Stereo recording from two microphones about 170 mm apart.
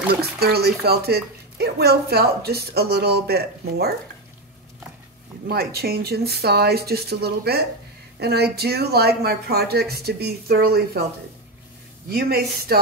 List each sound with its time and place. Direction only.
0.1 s speech: 70° right (ahead or behind)
5.5 s speech: 65° right (ahead or behind)
12.1 s speech: 65° right (ahead or behind)